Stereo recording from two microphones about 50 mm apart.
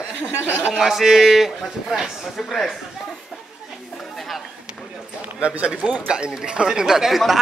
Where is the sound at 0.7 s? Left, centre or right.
Centre.